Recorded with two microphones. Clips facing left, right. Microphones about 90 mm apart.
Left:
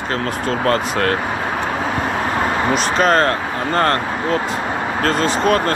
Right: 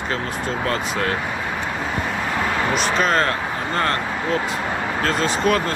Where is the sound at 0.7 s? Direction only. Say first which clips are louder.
Left 6 dB; 55° left (ahead or behind).